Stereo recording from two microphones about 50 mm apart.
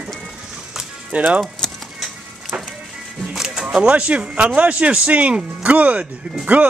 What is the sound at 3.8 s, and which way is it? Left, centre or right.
Speech, right.